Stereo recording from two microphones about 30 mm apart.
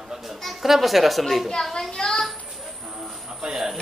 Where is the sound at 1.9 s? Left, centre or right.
Left.